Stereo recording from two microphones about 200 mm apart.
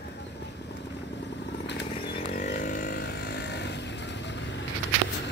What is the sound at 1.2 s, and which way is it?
Vehicle, 60° left (ahead or behind).